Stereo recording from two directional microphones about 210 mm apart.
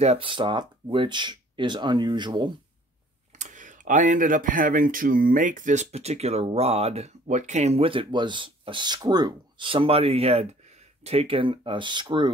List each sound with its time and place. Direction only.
0.0 s speech: 25° right (ahead or behind)
3.3 s speech: 35° right (ahead or behind)